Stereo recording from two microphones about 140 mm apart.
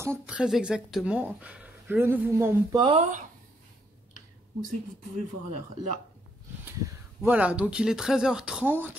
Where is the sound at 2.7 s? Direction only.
35° right (ahead or behind).